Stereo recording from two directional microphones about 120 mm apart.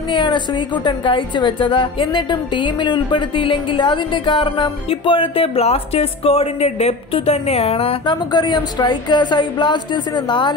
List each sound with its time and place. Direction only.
0.1 s a woman's voice: 40° left (ahead or behind)
8.0 s speech: 40° left (ahead or behind)